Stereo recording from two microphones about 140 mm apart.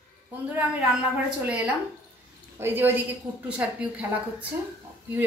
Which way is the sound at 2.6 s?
15° right (ahead or behind).